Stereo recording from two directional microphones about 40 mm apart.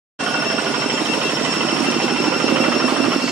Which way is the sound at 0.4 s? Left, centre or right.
Right.